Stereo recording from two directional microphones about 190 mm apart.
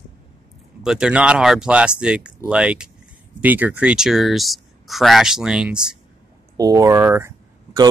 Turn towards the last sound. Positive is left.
turn(degrees=-15)  # may be behind; listen again after turning